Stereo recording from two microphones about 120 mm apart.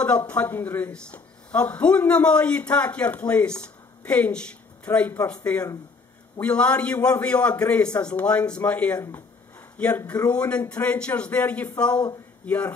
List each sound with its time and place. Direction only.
0.0 s speech: 15° left (ahead or behind)